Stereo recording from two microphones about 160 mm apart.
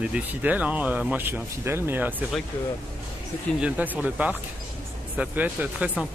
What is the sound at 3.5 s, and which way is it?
Speech, 10° right (ahead or behind).